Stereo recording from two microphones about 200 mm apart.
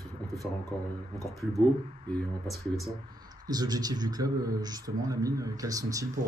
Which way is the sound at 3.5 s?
20° right (ahead or behind).